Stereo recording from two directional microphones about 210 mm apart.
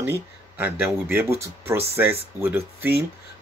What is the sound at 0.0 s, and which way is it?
Speech, 10° right (ahead or behind).